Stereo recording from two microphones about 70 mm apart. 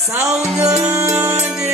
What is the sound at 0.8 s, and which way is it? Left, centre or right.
Music, right.